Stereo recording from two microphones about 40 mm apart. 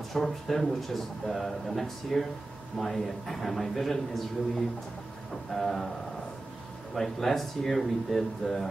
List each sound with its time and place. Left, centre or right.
0.1 s speech: centre
5.5 s speech: centre
7.0 s speech: centre